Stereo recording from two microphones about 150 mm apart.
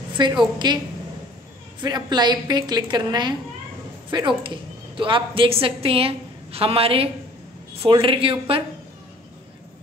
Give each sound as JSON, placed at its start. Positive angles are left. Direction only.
{"t": 0.2, "sound": "a woman's voice", "side_deg": -30}
{"t": 1.8, "sound": "a woman's voice", "side_deg": -30}
{"t": 4.4, "sound": "a woman's voice", "side_deg": -35}